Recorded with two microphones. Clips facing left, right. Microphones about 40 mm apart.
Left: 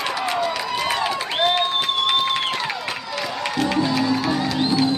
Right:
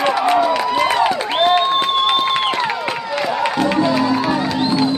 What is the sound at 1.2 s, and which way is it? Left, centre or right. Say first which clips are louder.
Crowd: right 5 dB; right.